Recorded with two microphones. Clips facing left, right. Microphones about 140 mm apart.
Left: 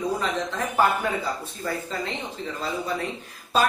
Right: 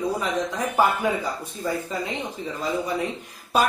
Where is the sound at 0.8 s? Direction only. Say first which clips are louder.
Right 1 dB; 15° right (ahead or behind).